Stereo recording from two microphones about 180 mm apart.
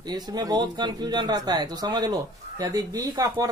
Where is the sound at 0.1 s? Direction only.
20° right (ahead or behind).